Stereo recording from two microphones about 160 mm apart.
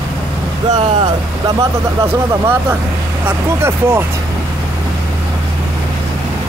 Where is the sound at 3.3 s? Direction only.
15° right (ahead or behind).